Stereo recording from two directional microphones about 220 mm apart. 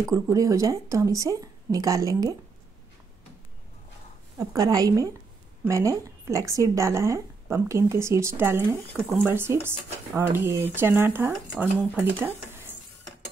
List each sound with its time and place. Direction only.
0.0 s speech: 15° right (ahead or behind)
4.4 s speech: 15° right (ahead or behind)
9.0 s speech: 5° left (ahead or behind)
9.3 s speech: 10° right (ahead or behind)